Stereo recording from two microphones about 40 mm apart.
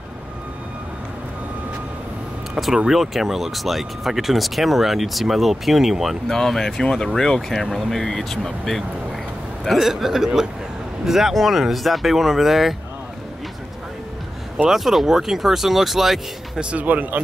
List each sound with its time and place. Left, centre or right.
2.9 s speech: centre
6.2 s speech: centre
9.8 s speech: centre
14.7 s speech: centre
16.7 s speech: right